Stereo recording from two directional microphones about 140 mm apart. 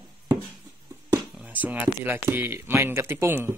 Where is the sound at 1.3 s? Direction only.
10° right (ahead or behind).